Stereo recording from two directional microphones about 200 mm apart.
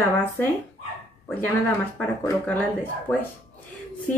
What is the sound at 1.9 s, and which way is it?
Speech, 10° left (ahead or behind).